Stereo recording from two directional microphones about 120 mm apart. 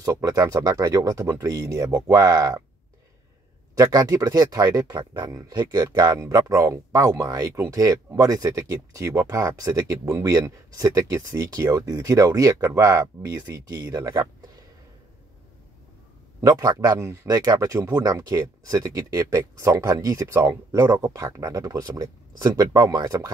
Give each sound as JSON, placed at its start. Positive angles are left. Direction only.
{"t": 0.0, "sound": "speech", "side_deg": -30}
{"t": 3.7, "sound": "speech", "side_deg": -30}
{"t": 16.3, "sound": "speech", "side_deg": -30}